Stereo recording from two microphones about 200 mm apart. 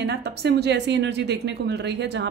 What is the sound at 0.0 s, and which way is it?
A woman's voice, 55° right (ahead or behind).